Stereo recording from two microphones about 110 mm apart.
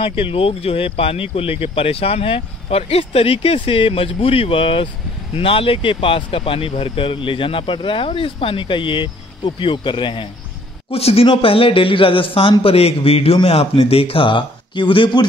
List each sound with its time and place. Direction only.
0.2 s speech: 55° left (ahead or behind)
10.9 s speech: 65° left (ahead or behind); by 15.2 s 50° left (ahead or behind)